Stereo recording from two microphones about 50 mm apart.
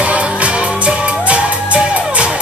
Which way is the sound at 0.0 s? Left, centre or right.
Right.